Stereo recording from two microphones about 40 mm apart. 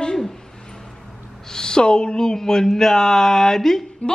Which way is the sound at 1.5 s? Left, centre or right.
Centre.